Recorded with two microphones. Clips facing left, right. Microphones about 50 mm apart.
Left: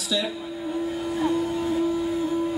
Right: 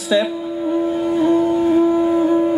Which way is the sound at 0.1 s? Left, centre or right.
Right.